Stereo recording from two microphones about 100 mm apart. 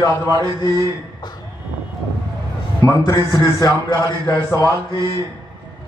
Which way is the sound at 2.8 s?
40° left (ahead or behind).